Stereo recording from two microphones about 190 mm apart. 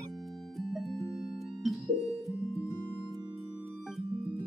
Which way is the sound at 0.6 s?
Centre (ahead or behind).